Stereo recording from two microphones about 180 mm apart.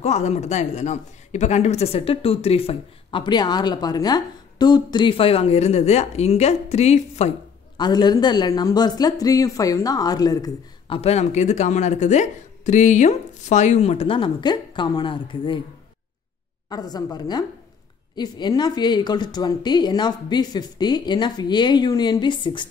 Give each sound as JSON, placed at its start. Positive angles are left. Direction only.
{"t": 0.0, "sound": "speech", "side_deg": 40}
{"t": 7.7, "sound": "speech", "side_deg": 25}
{"t": 11.0, "sound": "speech", "side_deg": 35}
{"t": 16.6, "sound": "speech", "side_deg": 20}